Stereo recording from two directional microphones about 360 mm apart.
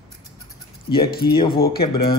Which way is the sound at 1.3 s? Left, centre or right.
Centre.